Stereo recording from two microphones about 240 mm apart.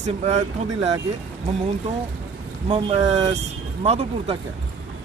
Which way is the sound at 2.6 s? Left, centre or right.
Right.